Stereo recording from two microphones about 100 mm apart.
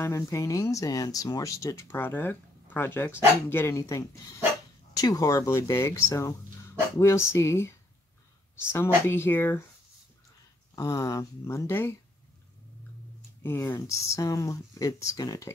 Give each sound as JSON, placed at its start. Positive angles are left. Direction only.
{"t": 0.0, "sound": "speech", "side_deg": 30}
{"t": 10.8, "sound": "speech", "side_deg": 35}
{"t": 13.4, "sound": "speech", "side_deg": 25}